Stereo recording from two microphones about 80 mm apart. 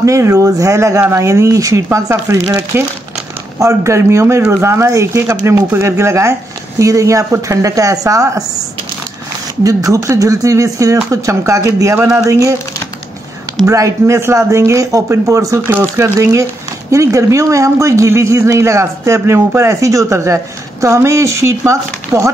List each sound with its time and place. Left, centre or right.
0.0 s speech: right
5.6 s speech: right
9.6 s speech: right
13.7 s speech: right